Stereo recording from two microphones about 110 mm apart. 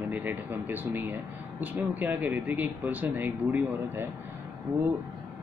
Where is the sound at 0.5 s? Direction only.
20° right (ahead or behind).